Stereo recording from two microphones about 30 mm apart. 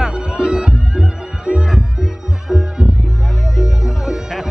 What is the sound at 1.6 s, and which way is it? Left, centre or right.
Music, centre.